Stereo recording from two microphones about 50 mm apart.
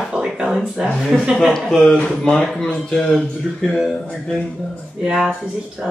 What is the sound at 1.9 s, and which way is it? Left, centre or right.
Speech, centre.